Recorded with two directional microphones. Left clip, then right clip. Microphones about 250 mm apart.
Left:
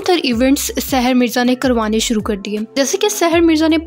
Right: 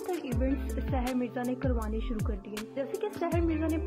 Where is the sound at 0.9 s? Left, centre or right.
Right.